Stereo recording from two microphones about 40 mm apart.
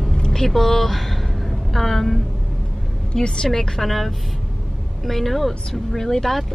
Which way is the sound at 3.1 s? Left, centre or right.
Centre.